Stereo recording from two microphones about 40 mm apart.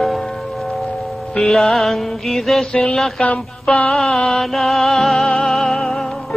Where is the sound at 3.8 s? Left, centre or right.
Centre.